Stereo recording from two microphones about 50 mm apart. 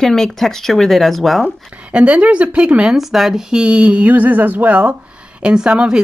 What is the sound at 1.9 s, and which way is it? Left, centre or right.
Speech, right.